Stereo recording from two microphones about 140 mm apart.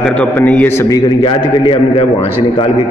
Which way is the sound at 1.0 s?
40° left (ahead or behind).